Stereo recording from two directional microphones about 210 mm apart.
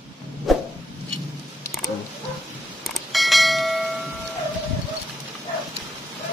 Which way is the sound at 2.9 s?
Centre (ahead or behind).